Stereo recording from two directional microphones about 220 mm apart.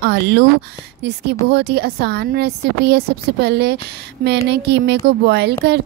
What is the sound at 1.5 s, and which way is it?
A woman's voice, 50° right (ahead or behind).